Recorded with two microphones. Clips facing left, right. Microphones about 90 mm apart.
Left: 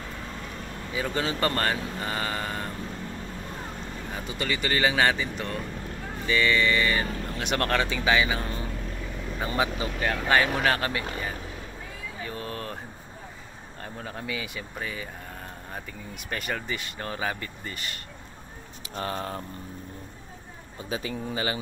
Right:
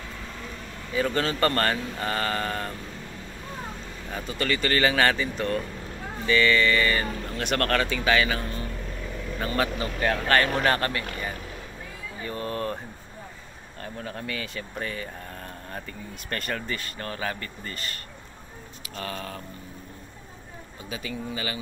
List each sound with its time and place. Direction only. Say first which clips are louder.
0.9 s speech: right 3 dB; 10° left (ahead or behind)
4.1 s speech: right 3 dB; 15° left (ahead or behind)
12.2 s speech: right 5 dB; 5° left (ahead or behind)
13.9 s speech: even; 15° left (ahead or behind)
16.3 s speech: even; 10° left (ahead or behind)
18.9 s speech: left 3 dB; 30° left (ahead or behind)
20.9 s speech: left 2 dB; 30° left (ahead or behind)